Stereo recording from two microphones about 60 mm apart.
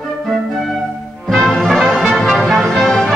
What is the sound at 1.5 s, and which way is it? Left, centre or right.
Music, centre.